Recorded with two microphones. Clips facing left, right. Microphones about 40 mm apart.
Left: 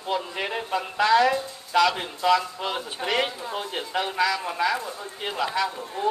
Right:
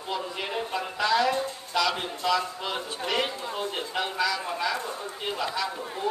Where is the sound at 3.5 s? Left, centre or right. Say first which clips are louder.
Left 1 dB; left.